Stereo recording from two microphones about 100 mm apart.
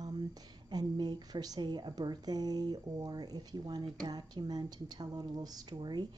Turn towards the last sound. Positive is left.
turn(degrees=-50)  # may be behind; listen again after turning